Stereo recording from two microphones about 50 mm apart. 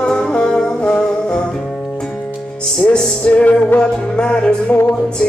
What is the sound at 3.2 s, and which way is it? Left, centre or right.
Music, left.